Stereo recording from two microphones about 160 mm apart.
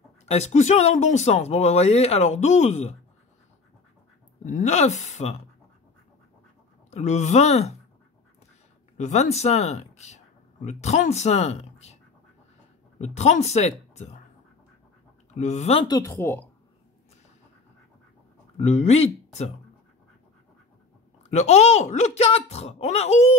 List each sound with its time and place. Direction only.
0.2 s speech: 45° left (ahead or behind)
4.5 s speech: 50° left (ahead or behind)
6.9 s speech: 45° left (ahead or behind)
8.9 s speech: 45° left (ahead or behind)
13.0 s speech: 45° left (ahead or behind)
15.3 s speech: 45° left (ahead or behind)
15.8 s speech: 20° left (ahead or behind)
18.6 s speech: 45° left (ahead or behind)
21.2 s speech: 45° left (ahead or behind)